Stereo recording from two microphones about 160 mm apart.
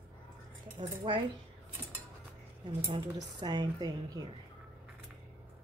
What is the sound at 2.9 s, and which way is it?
Speech, 50° right (ahead or behind).